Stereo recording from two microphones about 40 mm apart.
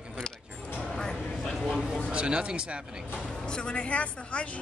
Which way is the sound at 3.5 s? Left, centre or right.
Left.